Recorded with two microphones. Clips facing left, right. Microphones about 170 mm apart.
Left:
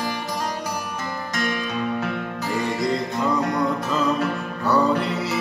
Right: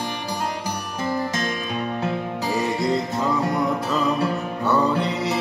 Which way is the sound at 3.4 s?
25° right (ahead or behind).